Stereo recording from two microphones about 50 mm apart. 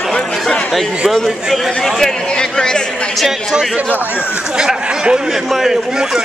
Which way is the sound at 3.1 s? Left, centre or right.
Centre.